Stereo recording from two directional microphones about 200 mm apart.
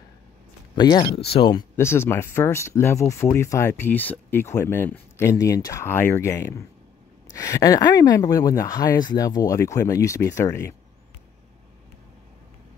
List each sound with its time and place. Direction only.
0.7 s speech: 20° left (ahead or behind)